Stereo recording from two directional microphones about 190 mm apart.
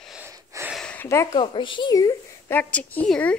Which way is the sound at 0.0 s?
5° right (ahead or behind).